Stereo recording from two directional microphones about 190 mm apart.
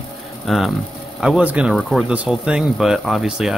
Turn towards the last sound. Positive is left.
turn(degrees=-5)  # may be behind; listen again after turning